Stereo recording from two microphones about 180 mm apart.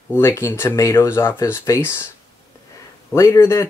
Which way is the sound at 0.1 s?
15° left (ahead or behind).